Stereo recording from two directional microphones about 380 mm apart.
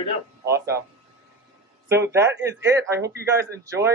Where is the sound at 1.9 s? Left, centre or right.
Centre.